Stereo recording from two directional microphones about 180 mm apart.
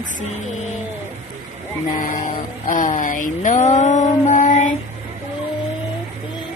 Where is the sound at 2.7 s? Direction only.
45° left (ahead or behind).